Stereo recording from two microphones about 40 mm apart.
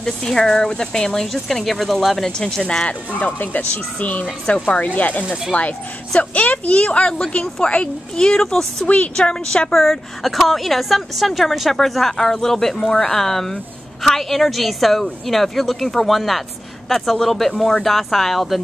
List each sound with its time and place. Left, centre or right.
0.0 s speech: centre
2.2 s speech: centre
2.9 s a woman's voice: left
8.3 s speech: centre
8.8 s a woman's voice: left
9.1 s a child's voice: centre
9.7 s speech: centre